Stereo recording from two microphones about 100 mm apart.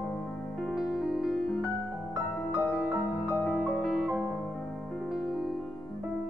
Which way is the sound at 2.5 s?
10° right (ahead or behind).